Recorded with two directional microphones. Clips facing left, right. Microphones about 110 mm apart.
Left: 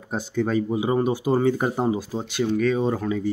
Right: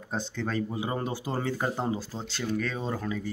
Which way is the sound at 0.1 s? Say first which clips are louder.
Left 8 dB; 10° left (ahead or behind).